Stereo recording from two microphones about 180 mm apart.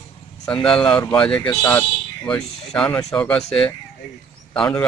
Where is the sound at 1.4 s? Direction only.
20° left (ahead or behind).